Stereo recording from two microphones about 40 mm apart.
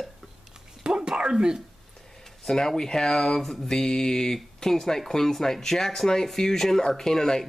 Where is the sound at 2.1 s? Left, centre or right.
Centre.